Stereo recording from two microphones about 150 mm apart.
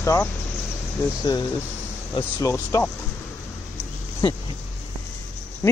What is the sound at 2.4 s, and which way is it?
Speech, 20° left (ahead or behind).